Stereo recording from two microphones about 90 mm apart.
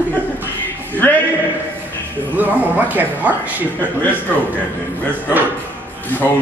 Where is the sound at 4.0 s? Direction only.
20° left (ahead or behind).